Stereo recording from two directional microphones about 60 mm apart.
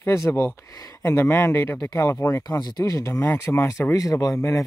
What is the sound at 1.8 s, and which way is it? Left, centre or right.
Speech, left.